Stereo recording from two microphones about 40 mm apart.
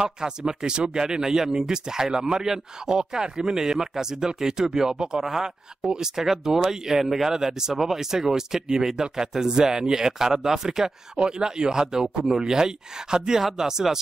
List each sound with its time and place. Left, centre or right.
0.0 s speech: centre